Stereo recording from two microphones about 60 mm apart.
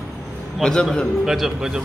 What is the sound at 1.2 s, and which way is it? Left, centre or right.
Speech, centre.